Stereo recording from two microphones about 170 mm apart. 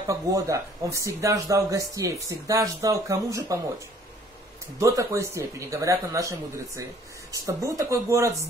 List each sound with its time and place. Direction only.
0.0 s speech: 20° right (ahead or behind)
4.7 s speech: 15° right (ahead or behind)